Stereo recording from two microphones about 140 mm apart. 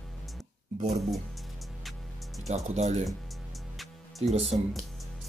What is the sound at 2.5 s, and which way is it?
Speech, 55° right (ahead or behind).